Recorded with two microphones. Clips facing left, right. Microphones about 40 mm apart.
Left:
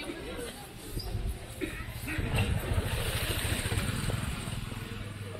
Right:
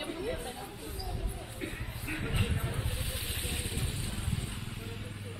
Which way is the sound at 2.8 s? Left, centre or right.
Left.